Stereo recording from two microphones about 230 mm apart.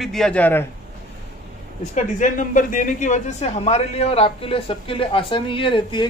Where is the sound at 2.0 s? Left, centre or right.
Left.